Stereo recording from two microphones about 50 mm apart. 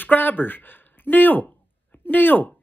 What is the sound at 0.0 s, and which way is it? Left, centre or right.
Speech, left.